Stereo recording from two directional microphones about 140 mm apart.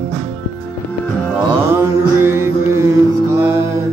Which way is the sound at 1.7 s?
15° right (ahead or behind).